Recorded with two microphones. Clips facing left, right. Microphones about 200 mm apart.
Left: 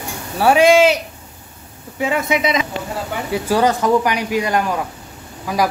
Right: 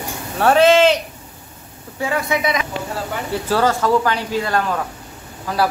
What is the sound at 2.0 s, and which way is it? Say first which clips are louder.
A man's voice: left 2 dB; 20° left (ahead or behind).